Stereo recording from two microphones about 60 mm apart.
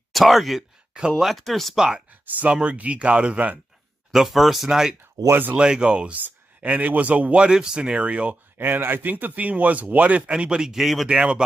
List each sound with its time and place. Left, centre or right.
0.1 s speech: centre
2.0 s speech: centre
4.1 s speech: centre
5.3 s speech: right
5.6 s speech: centre
8.5 s speech: right; by 11.1 s centre
11.1 s speech: centre